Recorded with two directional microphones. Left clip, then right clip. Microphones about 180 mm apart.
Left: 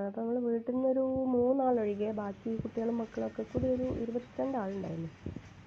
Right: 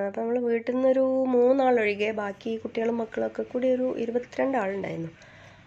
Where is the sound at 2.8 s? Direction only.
25° right (ahead or behind).